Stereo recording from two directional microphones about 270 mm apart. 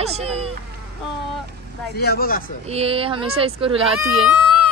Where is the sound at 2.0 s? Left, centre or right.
Left.